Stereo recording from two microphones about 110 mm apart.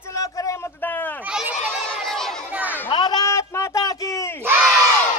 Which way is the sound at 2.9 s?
40° left (ahead or behind).